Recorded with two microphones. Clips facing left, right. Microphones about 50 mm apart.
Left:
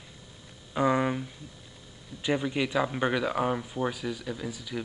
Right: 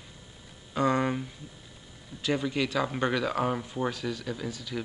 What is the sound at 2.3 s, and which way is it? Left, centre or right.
Speech, centre.